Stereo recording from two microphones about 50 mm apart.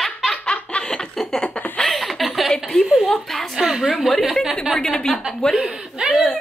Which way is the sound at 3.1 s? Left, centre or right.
Centre.